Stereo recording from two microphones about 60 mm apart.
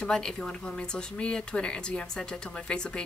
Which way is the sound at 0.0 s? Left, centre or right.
Centre.